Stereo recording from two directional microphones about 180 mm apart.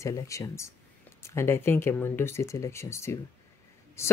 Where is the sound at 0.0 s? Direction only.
15° left (ahead or behind).